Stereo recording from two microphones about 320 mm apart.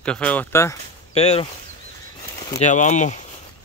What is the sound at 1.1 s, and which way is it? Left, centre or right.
Speech, centre.